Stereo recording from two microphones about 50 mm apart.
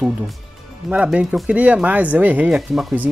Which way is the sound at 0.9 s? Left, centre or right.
Right.